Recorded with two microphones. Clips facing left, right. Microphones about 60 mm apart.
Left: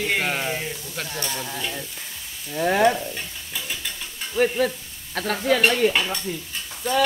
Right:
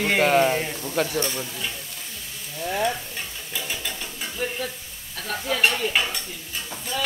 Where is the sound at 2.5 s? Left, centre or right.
Left.